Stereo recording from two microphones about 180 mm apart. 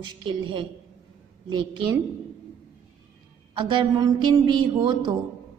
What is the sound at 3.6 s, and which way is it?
A woman's voice, 25° right (ahead or behind).